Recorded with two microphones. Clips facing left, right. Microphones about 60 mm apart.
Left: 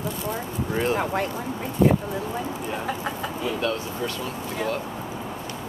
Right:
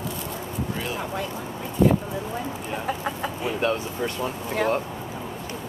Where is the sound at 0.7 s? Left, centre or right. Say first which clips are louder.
Left 10 dB; left.